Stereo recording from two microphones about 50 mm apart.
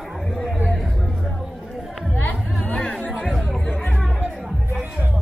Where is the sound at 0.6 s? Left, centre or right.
Centre.